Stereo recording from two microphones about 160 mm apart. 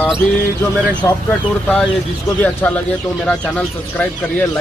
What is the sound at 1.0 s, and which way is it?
Speech, 20° left (ahead or behind).